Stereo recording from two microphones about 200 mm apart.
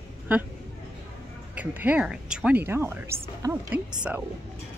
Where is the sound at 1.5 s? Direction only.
10° right (ahead or behind).